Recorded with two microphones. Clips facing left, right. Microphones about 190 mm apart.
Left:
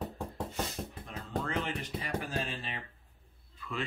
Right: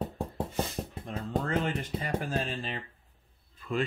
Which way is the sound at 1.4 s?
45° right (ahead or behind).